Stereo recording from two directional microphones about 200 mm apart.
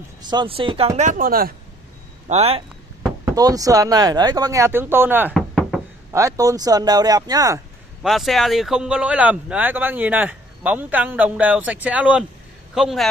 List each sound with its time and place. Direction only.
0.2 s speech: 20° right (ahead or behind); by 1.5 s 45° right (ahead or behind)
2.2 s speech: 30° right (ahead or behind)
3.3 s speech: 15° right (ahead or behind); by 5.8 s centre (ahead or behind)
6.1 s speech: 15° right (ahead or behind)
8.0 s a man's voice: centre (ahead or behind)